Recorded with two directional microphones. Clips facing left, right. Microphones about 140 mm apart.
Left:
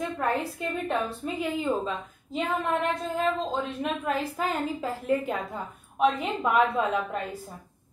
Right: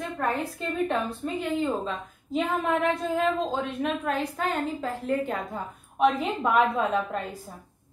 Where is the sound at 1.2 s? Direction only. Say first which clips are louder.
Right 2 dB; centre (ahead or behind).